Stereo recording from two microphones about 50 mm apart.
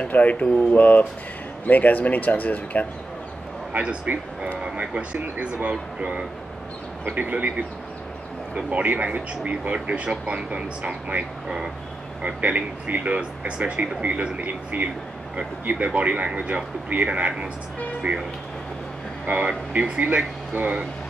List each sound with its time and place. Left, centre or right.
0.0 s speech: left
4.1 s speech: right
4.6 s a man's voice: right
19.2 s speech: right